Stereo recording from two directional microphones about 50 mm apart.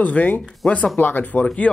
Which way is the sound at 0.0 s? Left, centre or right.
Left.